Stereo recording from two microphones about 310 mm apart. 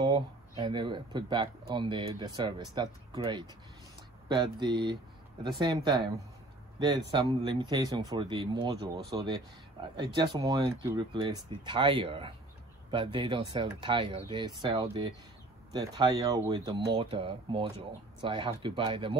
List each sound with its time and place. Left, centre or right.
0.0 s speech: centre
7.7 s speech: centre